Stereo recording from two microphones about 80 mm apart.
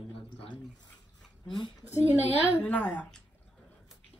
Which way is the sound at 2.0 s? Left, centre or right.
Right.